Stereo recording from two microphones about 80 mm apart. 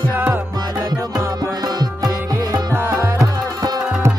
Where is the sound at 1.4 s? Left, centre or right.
Right.